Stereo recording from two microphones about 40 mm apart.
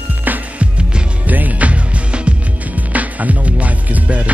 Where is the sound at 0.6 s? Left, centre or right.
Right.